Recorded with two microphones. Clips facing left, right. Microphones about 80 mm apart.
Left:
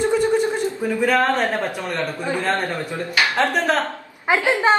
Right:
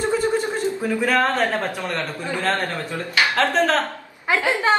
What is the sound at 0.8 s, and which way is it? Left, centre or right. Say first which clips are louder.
Speech: left 2 dB; centre.